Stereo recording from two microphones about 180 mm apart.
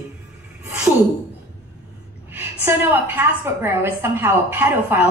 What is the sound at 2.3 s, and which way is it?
A woman's voice, 10° right (ahead or behind).